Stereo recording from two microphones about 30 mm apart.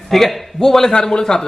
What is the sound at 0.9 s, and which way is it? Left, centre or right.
Speech, left.